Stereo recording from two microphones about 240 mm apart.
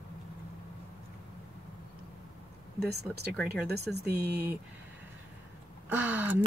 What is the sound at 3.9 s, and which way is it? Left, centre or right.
Speech, right.